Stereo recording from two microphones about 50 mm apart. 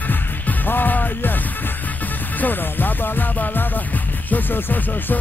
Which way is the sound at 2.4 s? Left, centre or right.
Left.